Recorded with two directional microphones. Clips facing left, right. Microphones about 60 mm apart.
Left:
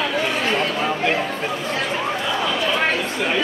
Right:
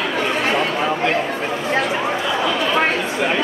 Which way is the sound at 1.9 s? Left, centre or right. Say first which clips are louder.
Right 2 dB; centre.